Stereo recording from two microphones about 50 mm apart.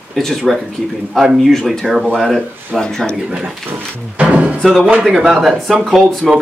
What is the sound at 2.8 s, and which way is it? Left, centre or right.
Speech, centre.